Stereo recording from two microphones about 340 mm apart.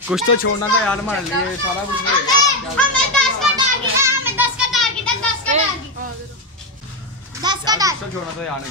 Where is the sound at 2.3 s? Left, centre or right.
Centre.